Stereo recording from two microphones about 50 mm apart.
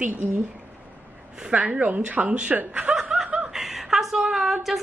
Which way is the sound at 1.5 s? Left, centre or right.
Right.